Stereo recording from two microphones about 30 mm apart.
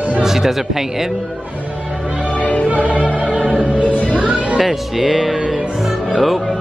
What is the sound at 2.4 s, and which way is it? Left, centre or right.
Music, left.